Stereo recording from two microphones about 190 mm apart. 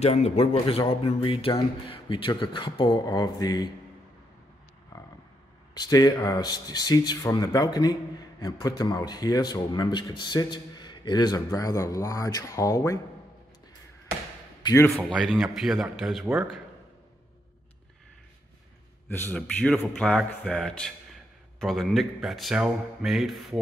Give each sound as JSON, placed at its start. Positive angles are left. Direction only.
{"t": 0.0, "sound": "speech", "side_deg": 35}
{"t": 5.8, "sound": "speech", "side_deg": 20}
{"t": 14.6, "sound": "a man's voice", "side_deg": 20}
{"t": 14.9, "sound": "a man's voice", "side_deg": 5}
{"t": 19.0, "sound": "a man's voice", "side_deg": 10}